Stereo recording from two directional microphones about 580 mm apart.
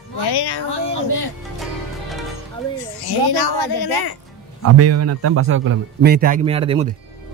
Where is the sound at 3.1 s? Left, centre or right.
Left.